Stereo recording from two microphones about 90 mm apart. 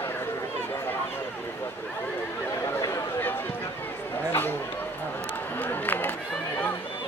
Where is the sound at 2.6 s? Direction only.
35° left (ahead or behind).